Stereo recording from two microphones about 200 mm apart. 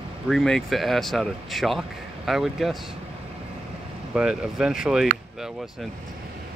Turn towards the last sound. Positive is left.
turn(degrees=0)  # may be behind; listen again after turning